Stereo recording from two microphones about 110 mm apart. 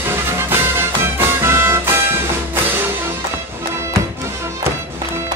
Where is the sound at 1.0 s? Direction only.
20° right (ahead or behind).